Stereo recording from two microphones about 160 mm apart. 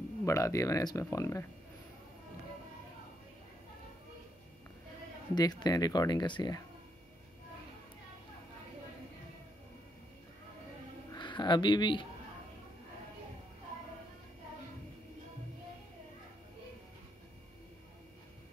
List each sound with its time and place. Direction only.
0.2 s speech: 20° left (ahead or behind)
5.3 s speech: 25° left (ahead or behind)
11.1 s speech: 30° left (ahead or behind)